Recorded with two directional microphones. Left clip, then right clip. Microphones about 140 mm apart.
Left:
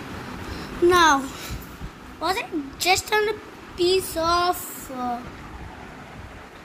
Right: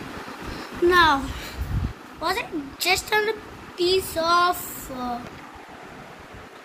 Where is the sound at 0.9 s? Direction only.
45° left (ahead or behind).